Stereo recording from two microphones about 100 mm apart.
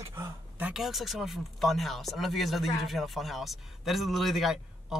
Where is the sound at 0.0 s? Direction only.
25° right (ahead or behind).